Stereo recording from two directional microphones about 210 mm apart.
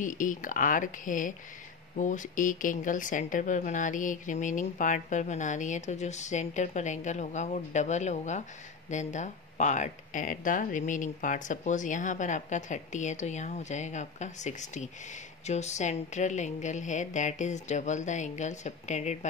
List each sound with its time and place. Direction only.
0.0 s speech: 40° left (ahead or behind)